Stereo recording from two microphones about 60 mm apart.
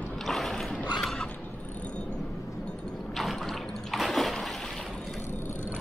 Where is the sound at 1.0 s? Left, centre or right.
Centre.